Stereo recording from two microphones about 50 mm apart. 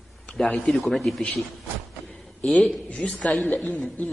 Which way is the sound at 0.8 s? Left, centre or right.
Centre.